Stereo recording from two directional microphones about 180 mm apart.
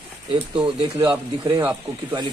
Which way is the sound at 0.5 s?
25° right (ahead or behind).